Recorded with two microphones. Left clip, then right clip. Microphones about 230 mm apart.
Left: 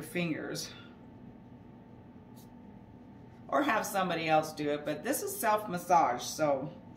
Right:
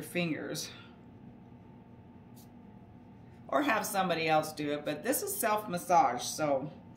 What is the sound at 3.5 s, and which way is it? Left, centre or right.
Speech, right.